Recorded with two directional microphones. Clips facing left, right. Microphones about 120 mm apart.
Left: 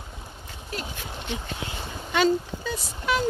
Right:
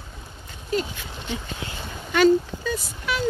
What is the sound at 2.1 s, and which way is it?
Speech, 20° left (ahead or behind).